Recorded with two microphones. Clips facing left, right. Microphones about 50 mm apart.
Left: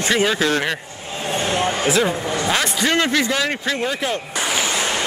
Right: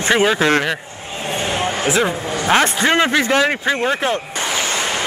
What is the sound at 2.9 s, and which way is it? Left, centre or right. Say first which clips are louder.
Speech: right 1 dB; centre.